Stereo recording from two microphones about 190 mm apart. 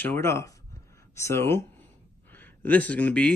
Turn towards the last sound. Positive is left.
turn(degrees=5)  # may be behind; listen again after turning